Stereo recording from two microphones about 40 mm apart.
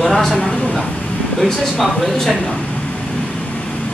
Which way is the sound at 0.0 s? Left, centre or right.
Centre.